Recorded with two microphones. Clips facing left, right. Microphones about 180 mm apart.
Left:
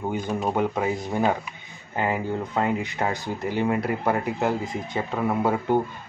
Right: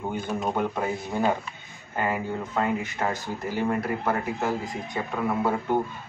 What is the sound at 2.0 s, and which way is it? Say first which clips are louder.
Speech: left 2 dB; 10° left (ahead or behind).